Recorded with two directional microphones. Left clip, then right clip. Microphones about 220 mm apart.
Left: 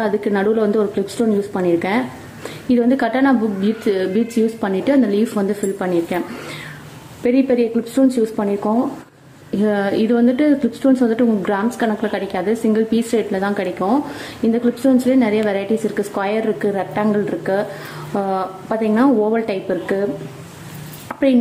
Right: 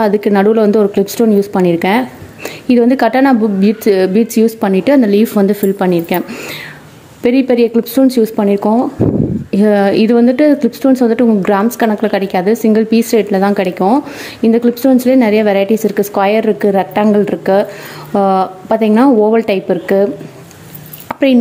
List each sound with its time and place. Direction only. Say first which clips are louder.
0.0 s speech: right 7 dB; 40° right (ahead or behind)
7.2 s speech: right 5 dB; 45° right (ahead or behind)
21.1 s a sound: right 5 dB; 40° right (ahead or behind)